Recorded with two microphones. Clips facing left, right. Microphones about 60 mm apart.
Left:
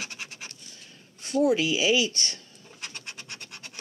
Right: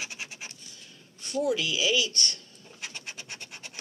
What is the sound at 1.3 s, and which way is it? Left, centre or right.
Speech, left.